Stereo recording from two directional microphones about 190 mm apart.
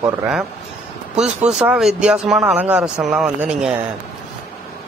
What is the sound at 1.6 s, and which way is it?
Speech, 5° right (ahead or behind).